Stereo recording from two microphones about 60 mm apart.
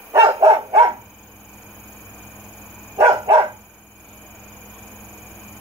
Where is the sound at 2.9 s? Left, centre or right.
Right.